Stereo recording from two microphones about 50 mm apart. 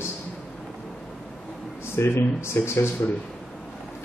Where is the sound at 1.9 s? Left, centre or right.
Left.